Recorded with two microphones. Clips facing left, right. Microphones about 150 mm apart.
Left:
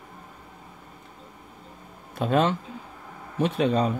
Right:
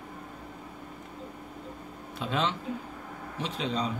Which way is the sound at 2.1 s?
50° left (ahead or behind).